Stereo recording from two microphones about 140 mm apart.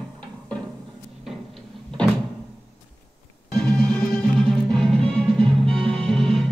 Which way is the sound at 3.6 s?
5° left (ahead or behind).